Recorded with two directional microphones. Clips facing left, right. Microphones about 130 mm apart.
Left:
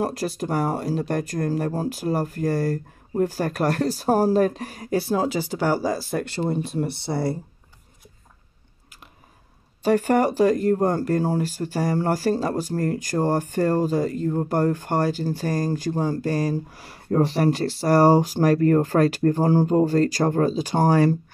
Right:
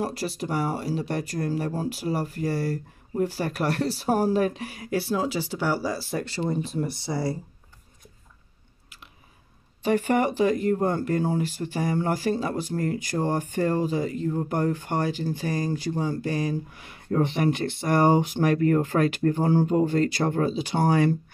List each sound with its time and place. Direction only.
0.0 s speech: 45° left (ahead or behind)
9.8 s speech: 40° left (ahead or behind)